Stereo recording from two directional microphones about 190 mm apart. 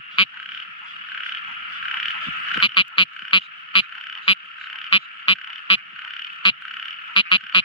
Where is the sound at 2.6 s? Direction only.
25° left (ahead or behind).